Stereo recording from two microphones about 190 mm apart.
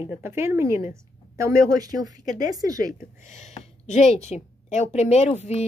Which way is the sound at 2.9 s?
40° left (ahead or behind).